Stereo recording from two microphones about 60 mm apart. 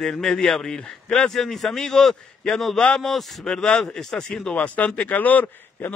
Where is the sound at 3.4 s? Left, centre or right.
Centre.